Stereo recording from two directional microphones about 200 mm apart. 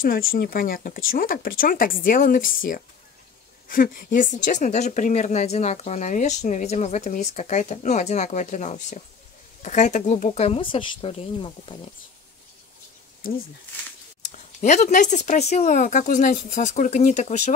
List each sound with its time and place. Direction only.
0.0 s speech: 45° left (ahead or behind); by 11.9 s 25° left (ahead or behind)
13.2 s speech: 45° left (ahead or behind)
14.2 s speech: 35° left (ahead or behind)